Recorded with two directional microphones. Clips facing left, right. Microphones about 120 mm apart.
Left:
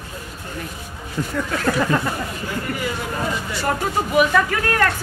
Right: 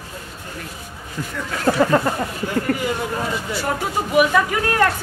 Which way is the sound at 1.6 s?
30° right (ahead or behind).